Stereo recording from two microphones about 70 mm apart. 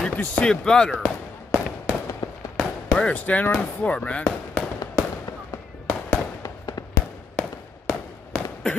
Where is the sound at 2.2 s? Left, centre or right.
Left.